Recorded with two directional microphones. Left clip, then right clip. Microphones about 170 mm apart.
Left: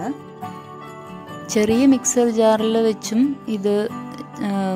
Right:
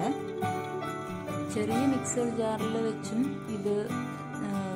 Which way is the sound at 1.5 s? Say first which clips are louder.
Left 13 dB; 55° left (ahead or behind).